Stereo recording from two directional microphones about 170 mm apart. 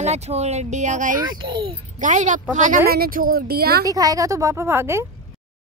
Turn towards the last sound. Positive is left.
turn(degrees=-15)  # may be behind; listen again after turning